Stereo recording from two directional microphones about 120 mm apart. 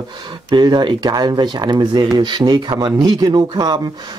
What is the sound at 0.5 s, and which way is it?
Speech, 40° right (ahead or behind).